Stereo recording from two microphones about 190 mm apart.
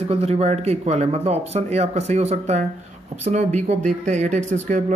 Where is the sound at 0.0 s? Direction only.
30° right (ahead or behind).